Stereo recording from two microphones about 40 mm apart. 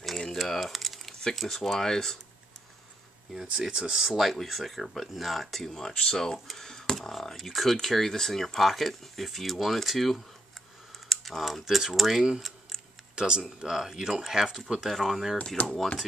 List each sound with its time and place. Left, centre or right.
0.3 s a sound: centre
1.3 s speech: centre
3.5 s speech: right
4.0 s speech: centre
5.7 s speech: centre
12.4 s a sound: centre
13.1 s speech: centre
15.6 s speech: left